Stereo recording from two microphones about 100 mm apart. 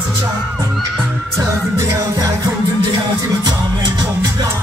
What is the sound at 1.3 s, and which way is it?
Music, 30° right (ahead or behind).